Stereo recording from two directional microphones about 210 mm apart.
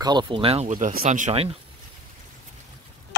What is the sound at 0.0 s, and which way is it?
Speech, 20° right (ahead or behind).